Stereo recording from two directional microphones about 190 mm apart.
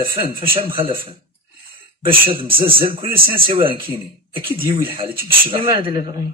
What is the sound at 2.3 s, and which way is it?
Speech, 30° right (ahead or behind).